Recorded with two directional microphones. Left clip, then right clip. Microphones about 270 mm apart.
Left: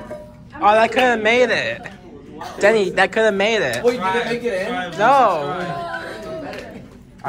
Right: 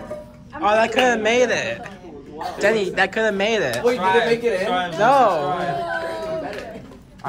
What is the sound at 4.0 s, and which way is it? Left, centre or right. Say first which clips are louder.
Speech: right 3 dB; right.